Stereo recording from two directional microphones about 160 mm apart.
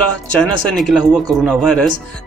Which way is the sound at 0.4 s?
Centre (ahead or behind).